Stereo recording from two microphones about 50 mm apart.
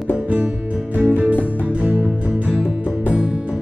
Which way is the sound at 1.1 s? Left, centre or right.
Right.